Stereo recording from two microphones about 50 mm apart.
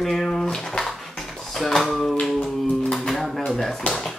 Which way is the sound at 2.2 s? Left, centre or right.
Centre.